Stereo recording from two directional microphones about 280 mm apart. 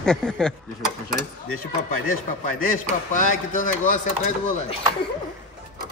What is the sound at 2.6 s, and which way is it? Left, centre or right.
Chopping, left.